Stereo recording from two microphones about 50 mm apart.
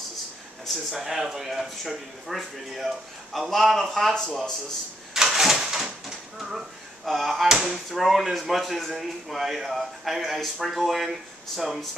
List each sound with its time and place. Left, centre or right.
0.9 s a man's voice: centre
4.1 s speech: centre
5.1 s a sound: centre
7.1 s a man's voice: centre
7.5 s a man's voice: centre